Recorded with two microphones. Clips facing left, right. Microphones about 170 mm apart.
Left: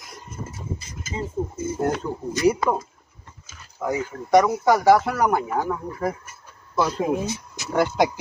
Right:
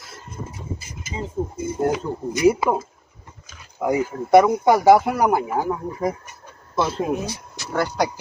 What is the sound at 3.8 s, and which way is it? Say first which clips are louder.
Speech: right 5 dB; 10° right (ahead or behind).